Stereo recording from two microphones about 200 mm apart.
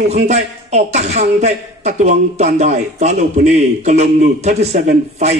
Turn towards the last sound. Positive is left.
turn(degrees=-35)  # may be behind; listen again after turning